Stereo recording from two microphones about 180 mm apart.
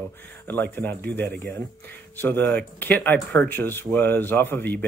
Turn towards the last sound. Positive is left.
turn(degrees=10)  # may be behind; listen again after turning